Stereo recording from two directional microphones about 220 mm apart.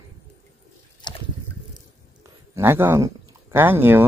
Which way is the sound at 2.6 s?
10° right (ahead or behind).